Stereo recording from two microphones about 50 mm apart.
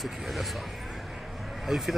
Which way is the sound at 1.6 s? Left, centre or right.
Centre.